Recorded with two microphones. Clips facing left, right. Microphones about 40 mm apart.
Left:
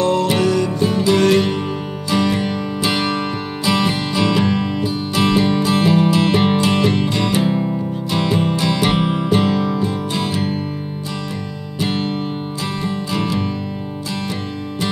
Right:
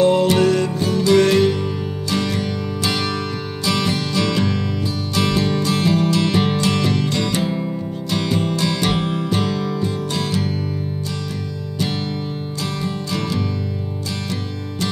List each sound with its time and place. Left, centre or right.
0.0 s music: centre
0.4 s music: centre
0.8 s music: centre
11.8 s music: centre